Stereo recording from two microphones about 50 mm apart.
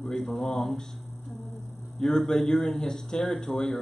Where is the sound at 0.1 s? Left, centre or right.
Centre.